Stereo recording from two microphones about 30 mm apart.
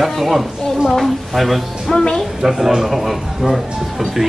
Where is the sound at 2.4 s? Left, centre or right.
Centre.